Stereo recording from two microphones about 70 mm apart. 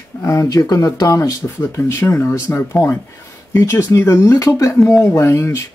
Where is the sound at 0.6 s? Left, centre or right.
Left.